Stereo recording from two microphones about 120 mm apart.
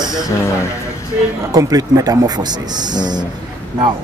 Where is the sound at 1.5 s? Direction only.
30° right (ahead or behind).